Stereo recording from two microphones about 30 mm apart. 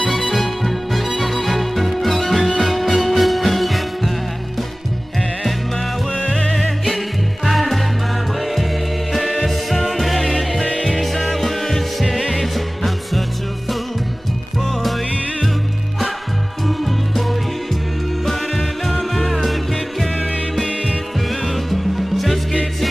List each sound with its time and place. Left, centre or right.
0.3 s music: centre
7.4 s music: centre
16.6 s music: centre
21.3 s music: centre